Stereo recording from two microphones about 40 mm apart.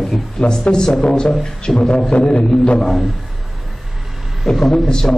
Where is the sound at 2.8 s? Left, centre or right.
Centre.